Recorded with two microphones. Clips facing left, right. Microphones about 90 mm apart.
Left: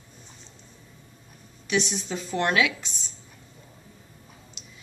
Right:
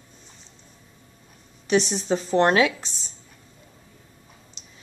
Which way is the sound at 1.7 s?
35° right (ahead or behind).